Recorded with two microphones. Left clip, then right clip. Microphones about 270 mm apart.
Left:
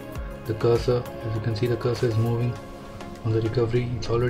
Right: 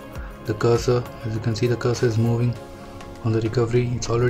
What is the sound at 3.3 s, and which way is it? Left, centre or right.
Speech, centre.